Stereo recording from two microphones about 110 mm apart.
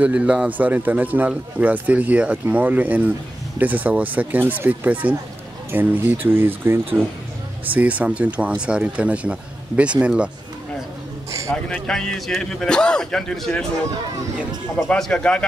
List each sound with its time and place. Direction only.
0.0 s a man's voice: 10° right (ahead or behind)
11.5 s a man's voice: 10° left (ahead or behind)
14.9 s speech: 10° left (ahead or behind)